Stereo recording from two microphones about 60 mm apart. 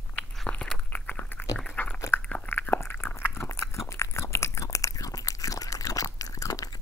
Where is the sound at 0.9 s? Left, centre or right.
Left.